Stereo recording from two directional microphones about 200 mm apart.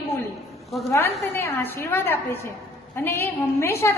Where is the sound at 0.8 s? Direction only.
15° left (ahead or behind).